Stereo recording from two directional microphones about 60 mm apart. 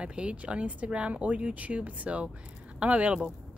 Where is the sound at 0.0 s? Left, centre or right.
Centre.